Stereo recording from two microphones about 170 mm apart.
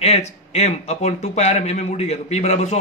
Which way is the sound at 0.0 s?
40° left (ahead or behind).